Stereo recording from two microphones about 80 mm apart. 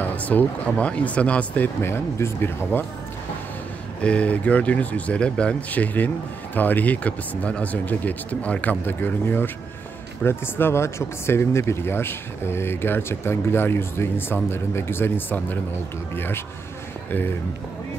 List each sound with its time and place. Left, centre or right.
0.0 s speech: centre
1.8 s speech: left
4.0 s speech: centre